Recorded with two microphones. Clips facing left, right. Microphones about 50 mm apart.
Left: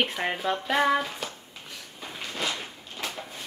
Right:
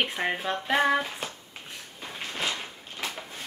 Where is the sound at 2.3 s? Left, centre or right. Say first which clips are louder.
Even; right.